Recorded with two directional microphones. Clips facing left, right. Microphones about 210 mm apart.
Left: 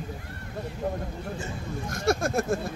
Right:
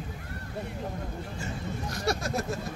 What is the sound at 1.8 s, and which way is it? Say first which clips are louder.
Speech: left 5 dB; 50° left (ahead or behind).